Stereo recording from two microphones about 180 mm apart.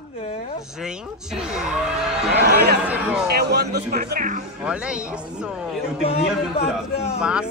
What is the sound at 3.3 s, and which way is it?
Music, 65° right (ahead or behind).